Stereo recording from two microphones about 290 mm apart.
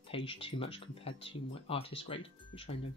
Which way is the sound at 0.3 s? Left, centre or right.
Centre.